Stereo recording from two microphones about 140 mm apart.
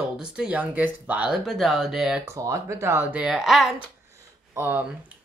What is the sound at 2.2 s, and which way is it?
Speech, 20° right (ahead or behind).